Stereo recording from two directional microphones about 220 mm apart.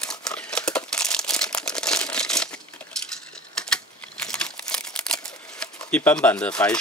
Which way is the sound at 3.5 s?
5° left (ahead or behind).